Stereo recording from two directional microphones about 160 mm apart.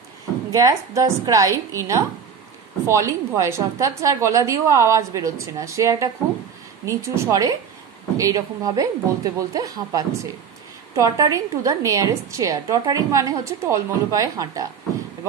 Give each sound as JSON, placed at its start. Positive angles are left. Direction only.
{"t": 0.5, "sound": "a woman's voice", "side_deg": -20}